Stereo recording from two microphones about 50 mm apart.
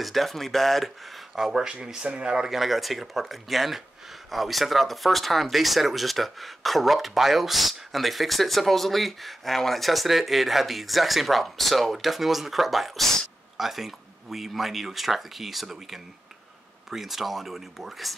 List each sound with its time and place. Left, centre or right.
0.0 s speech: centre